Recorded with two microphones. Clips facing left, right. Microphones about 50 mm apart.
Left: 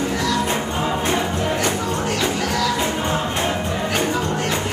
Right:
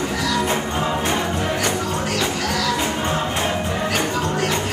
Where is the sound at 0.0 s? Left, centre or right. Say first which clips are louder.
Left 1 dB; centre.